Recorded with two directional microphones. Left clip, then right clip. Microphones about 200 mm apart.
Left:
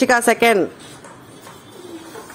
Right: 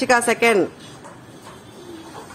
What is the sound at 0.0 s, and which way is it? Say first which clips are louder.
Speech: left 2 dB; 35° left (ahead or behind).